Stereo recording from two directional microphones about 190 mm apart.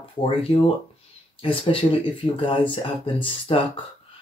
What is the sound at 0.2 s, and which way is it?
Speech, 30° left (ahead or behind).